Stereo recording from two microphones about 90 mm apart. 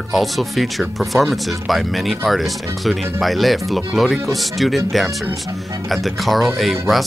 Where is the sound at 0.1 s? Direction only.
Centre (ahead or behind).